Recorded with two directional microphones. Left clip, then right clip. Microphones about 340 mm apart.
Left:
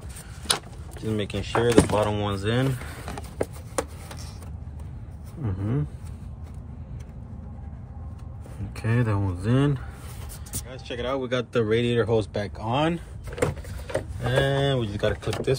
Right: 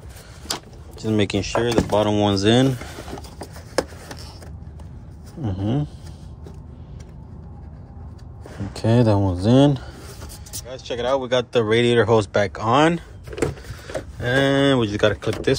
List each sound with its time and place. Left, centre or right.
1.1 s speech: centre
5.6 s speech: centre
8.7 s speech: right
10.7 s speech: centre
14.2 s speech: right